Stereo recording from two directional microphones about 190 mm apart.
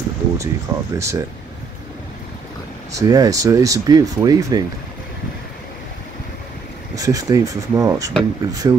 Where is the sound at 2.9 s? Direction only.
20° right (ahead or behind).